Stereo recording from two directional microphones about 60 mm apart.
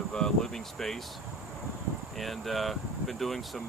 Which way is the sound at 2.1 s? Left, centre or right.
Centre.